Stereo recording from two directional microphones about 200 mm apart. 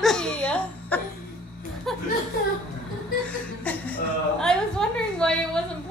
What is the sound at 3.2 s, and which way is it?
A woman's voice, 5° left (ahead or behind).